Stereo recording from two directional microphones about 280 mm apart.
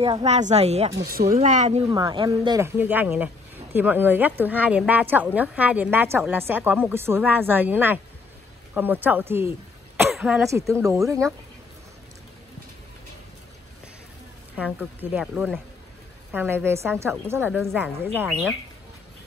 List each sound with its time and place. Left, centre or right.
0.0 s a woman's voice: right
14.6 s a woman's voice: centre